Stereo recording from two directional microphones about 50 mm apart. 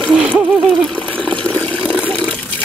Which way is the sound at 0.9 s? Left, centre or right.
Left.